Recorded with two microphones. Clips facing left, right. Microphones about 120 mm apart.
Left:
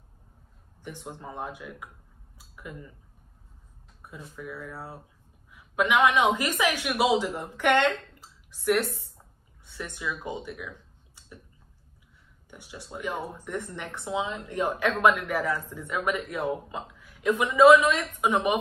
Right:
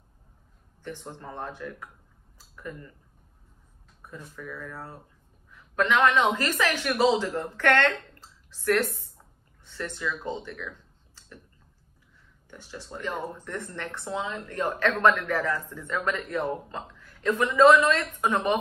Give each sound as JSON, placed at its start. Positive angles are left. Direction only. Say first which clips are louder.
{"t": 0.8, "sound": "speech", "louder": "right 1 dB", "side_deg": 10}
{"t": 2.3, "sound": "a sound", "louder": "right 2 dB", "side_deg": 10}
{"t": 4.0, "sound": "speech", "louder": "even", "side_deg": 10}
{"t": 12.4, "sound": "speech", "louder": "right 2 dB", "side_deg": 15}